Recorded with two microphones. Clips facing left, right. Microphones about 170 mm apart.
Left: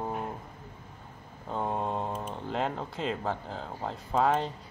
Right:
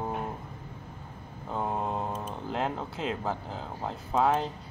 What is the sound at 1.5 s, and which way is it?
Mantra, 5° right (ahead or behind).